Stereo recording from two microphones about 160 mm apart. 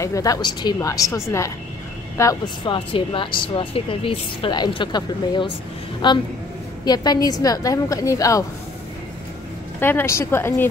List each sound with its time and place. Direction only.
0.0 s a woman's voice: 20° left (ahead or behind)
9.8 s a woman's voice: 15° left (ahead or behind)